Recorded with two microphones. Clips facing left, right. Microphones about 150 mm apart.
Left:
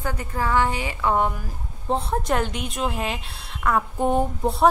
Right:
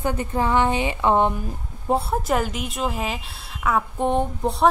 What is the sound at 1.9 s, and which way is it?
A woman's voice, 5° right (ahead or behind).